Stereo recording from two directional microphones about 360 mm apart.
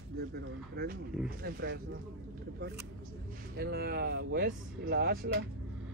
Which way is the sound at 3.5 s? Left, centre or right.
Right.